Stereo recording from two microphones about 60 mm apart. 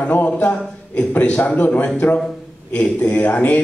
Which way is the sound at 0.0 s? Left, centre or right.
Left.